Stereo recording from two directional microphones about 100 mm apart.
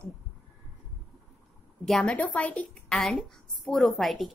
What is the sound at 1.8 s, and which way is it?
A woman's voice, 5° left (ahead or behind).